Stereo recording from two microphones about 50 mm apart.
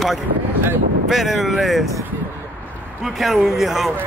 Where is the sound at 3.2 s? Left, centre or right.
Centre.